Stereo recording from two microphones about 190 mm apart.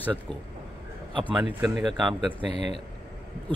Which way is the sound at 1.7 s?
Centre (ahead or behind).